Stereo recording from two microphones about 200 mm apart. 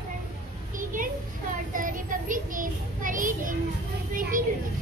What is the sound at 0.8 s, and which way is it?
Children playing, 40° right (ahead or behind).